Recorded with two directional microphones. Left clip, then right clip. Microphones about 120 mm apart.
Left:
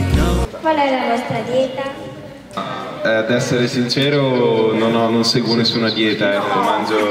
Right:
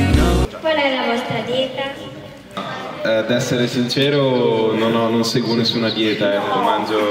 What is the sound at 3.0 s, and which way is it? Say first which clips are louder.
A man's voice: left 1 dB; 25° left (ahead or behind).